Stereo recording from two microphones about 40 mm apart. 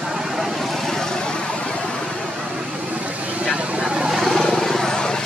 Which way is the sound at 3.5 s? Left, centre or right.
Right.